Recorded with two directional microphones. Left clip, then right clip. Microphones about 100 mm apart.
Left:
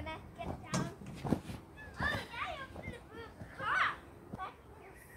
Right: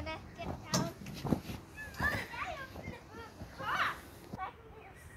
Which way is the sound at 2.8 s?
10° left (ahead or behind).